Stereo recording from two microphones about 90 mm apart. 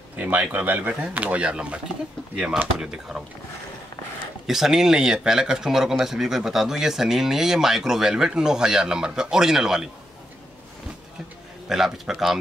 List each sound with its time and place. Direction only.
0.1 s speech: 20° right (ahead or behind)
4.5 s speech: 5° right (ahead or behind)
11.7 s speech: 5° right (ahead or behind)